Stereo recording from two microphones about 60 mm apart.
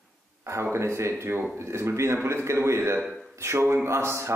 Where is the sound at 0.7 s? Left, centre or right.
Right.